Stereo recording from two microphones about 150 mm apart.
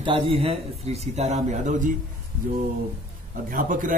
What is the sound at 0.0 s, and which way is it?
A man's voice, 40° right (ahead or behind).